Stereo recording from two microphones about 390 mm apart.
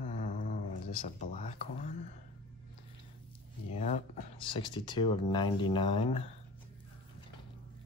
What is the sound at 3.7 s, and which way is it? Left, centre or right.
Speech, centre.